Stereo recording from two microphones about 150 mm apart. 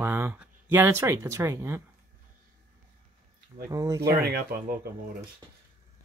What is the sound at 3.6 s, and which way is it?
Speech, 20° right (ahead or behind).